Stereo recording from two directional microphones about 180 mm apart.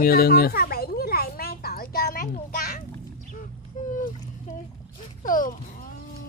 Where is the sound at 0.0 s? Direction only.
55° left (ahead or behind).